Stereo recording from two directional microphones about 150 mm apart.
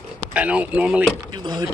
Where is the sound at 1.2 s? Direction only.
25° right (ahead or behind).